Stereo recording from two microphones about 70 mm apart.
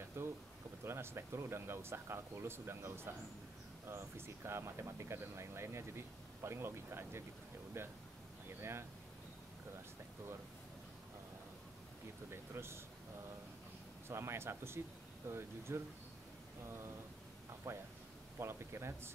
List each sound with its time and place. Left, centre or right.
0.2 s a sound: right
0.8 s speech: right
4.5 s speech: right
12.3 s speech: right
14.0 s speech: right
17.6 s speech: right